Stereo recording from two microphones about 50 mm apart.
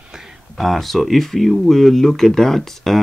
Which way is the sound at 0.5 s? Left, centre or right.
Centre.